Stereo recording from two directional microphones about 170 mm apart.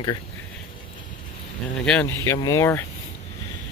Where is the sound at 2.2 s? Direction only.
20° left (ahead or behind).